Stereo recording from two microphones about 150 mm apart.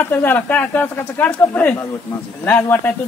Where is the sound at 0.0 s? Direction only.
15° left (ahead or behind).